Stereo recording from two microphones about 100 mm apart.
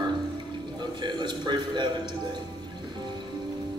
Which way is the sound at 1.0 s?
50° right (ahead or behind).